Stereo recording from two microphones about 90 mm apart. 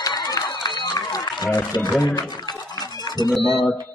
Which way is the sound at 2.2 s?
50° left (ahead or behind).